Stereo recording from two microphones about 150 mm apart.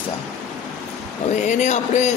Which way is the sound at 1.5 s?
50° left (ahead or behind).